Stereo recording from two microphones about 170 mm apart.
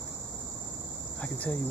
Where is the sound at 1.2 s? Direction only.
10° left (ahead or behind).